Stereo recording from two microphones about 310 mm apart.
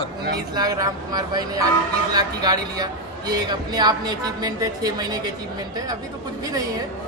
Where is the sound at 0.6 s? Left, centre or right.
Centre.